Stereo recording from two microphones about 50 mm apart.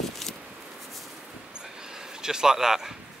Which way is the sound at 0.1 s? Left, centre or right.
Centre.